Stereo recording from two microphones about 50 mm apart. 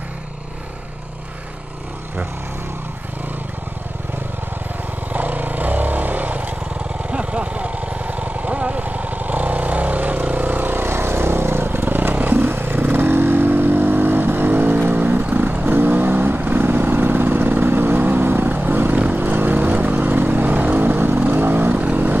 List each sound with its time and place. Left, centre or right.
5.1 s vehicle: right